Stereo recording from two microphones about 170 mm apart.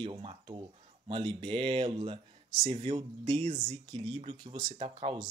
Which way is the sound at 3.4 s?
40° right (ahead or behind).